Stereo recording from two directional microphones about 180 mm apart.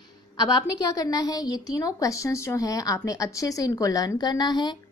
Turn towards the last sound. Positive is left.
turn(degrees=25)  # may be behind; listen again after turning